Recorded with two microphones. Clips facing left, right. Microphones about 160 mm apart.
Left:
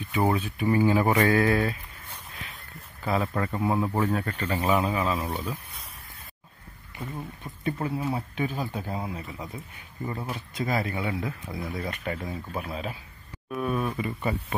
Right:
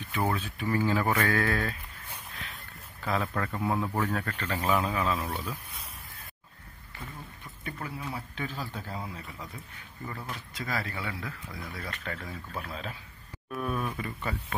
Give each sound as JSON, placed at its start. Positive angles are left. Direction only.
{"t": 0.2, "sound": "speech", "side_deg": 15}
{"t": 2.3, "sound": "speech", "side_deg": 0}
{"t": 7.0, "sound": "speech", "side_deg": 30}
{"t": 8.4, "sound": "speech", "side_deg": 15}
{"t": 10.3, "sound": "speech", "side_deg": 25}